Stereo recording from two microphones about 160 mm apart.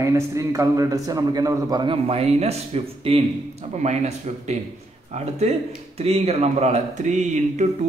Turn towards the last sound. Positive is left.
turn(degrees=-45)  # may be behind; listen again after turning